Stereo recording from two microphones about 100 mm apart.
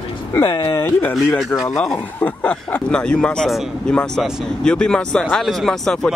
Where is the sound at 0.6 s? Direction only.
25° left (ahead or behind).